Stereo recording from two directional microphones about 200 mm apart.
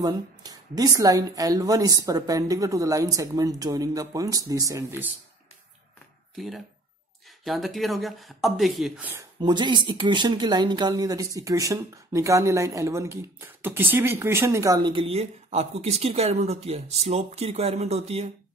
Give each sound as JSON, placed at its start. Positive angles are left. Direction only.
{"t": 0.0, "sound": "a woman's voice", "side_deg": -20}
{"t": 6.3, "sound": "speech", "side_deg": 0}
{"t": 9.4, "sound": "speech", "side_deg": -20}